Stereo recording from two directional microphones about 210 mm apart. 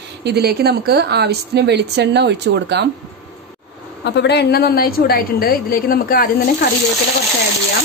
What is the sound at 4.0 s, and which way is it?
A woman's voice, 55° left (ahead or behind).